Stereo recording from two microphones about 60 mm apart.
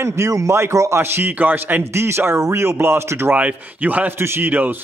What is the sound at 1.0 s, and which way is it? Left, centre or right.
Speech, right.